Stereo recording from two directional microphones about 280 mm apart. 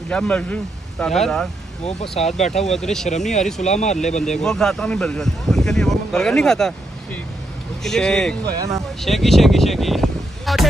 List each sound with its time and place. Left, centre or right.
0.1 s speech: centre
1.9 s speech: left
2.5 s speech: centre
3.1 s speech: left
4.4 s speech: centre
7.8 s speech: centre
8.5 s speech: centre
9.0 s a sound: centre